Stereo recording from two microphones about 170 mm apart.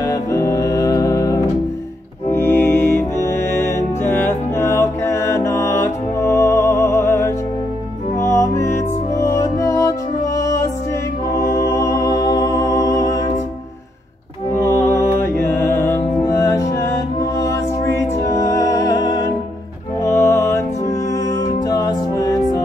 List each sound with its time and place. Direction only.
0.0 s music: 15° left (ahead or behind)
14.5 s music: 15° left (ahead or behind)